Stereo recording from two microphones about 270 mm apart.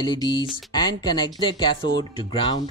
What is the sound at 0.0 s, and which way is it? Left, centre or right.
Speech, centre.